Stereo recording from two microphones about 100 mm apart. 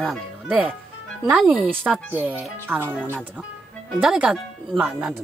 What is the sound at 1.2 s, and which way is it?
Speech, 10° right (ahead or behind).